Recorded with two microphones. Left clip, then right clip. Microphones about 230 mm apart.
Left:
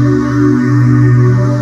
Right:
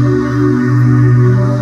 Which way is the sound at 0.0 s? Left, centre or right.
Centre.